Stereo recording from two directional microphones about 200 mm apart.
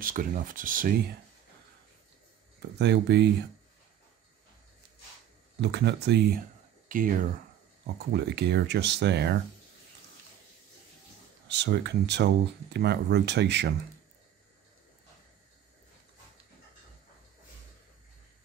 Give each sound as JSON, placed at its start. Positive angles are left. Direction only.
{"t": 0.0, "sound": "speech", "side_deg": -45}
{"t": 2.8, "sound": "speech", "side_deg": -60}
{"t": 5.6, "sound": "speech", "side_deg": -60}
{"t": 7.8, "sound": "speech", "side_deg": -55}
{"t": 11.4, "sound": "speech", "side_deg": -60}